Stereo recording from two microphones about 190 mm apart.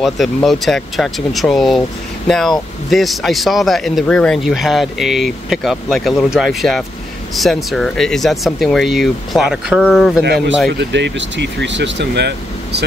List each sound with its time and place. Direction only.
0.0 s a man's voice: centre (ahead or behind)
10.2 s speech: 60° right (ahead or behind)